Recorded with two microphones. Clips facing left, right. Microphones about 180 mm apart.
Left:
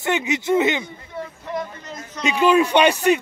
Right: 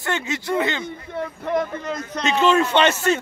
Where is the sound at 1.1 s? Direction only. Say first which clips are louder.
Right 5 dB; 60° right (ahead or behind).